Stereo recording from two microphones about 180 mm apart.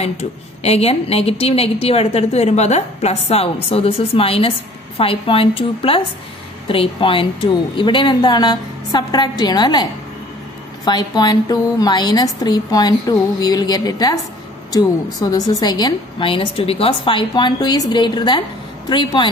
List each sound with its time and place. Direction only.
0.0 s a woman's voice: 35° left (ahead or behind)
10.9 s a woman's voice: 25° left (ahead or behind)
15.1 s a woman's voice: 20° left (ahead or behind)